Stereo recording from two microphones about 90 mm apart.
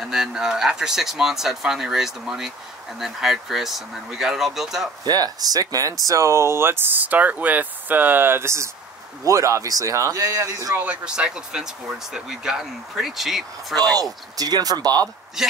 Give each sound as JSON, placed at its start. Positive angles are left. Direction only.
{"t": 0.0, "sound": "speech", "side_deg": -5}
{"t": 5.0, "sound": "speech", "side_deg": -45}
{"t": 10.8, "sound": "speech", "side_deg": -10}
{"t": 14.3, "sound": "speech", "side_deg": -45}